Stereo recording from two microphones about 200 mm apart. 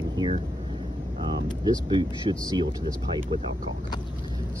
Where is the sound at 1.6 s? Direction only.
20° right (ahead or behind).